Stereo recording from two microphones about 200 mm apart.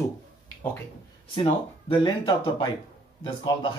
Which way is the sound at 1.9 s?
20° left (ahead or behind).